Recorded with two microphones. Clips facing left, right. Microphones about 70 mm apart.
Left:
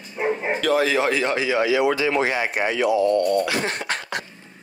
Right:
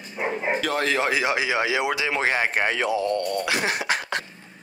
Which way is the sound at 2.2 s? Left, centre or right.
Right.